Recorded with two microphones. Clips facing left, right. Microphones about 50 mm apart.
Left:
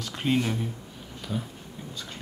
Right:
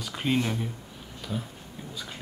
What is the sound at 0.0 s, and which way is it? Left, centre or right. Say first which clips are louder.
Speech: left 1 dB; centre.